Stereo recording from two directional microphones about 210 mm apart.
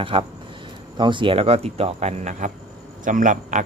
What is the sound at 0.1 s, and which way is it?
Speech, 25° right (ahead or behind).